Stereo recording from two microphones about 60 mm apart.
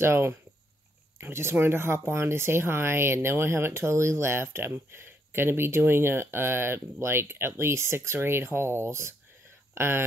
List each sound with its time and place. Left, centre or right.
0.0 s speech: right